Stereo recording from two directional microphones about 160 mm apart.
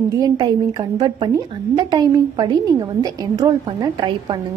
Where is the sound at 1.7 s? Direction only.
25° right (ahead or behind).